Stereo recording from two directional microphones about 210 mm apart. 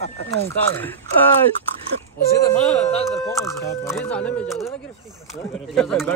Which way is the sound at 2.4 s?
5° left (ahead or behind).